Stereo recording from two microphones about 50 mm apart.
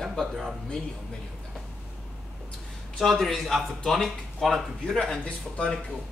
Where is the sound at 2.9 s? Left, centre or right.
Centre.